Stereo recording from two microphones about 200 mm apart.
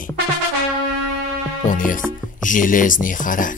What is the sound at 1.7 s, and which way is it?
Speech, 40° left (ahead or behind).